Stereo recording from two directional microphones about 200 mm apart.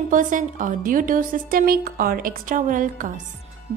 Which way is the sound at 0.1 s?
40° right (ahead or behind).